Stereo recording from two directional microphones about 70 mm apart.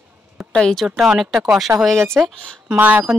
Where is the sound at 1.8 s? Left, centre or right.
Centre.